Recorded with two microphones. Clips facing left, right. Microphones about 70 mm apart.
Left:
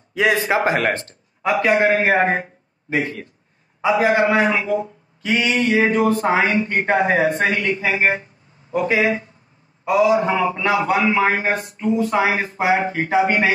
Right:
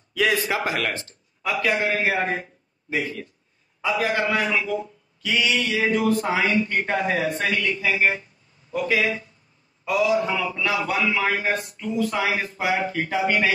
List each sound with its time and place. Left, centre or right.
0.1 s speech: left
1.4 s a man's voice: left
3.8 s speech: left